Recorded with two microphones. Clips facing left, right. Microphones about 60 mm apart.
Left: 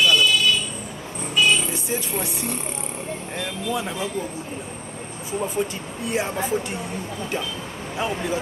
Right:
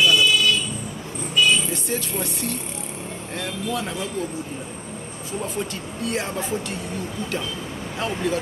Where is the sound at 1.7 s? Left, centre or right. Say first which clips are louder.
Even; centre.